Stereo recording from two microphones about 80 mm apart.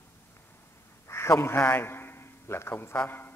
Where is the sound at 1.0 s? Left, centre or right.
Left.